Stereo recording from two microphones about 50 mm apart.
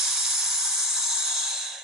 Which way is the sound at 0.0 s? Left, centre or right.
Centre.